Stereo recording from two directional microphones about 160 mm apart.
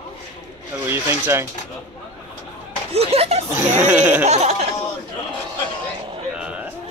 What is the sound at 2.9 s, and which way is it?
Speech, 40° right (ahead or behind).